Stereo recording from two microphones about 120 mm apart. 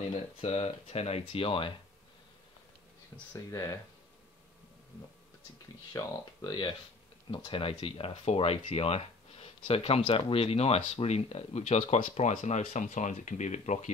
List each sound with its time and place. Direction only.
0.4 s speech: 55° left (ahead or behind)
3.5 s speech: 30° left (ahead or behind)
5.9 s speech: 35° left (ahead or behind)
7.2 s speech: 45° left (ahead or behind); by 13.9 s 80° left